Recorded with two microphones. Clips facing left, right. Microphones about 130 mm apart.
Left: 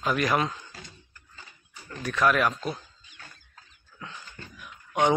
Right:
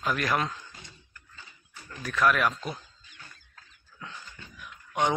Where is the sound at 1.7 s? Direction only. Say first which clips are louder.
Left 4 dB; 20° left (ahead or behind).